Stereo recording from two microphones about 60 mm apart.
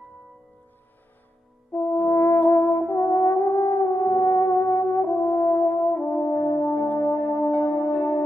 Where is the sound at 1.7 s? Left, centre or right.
Left.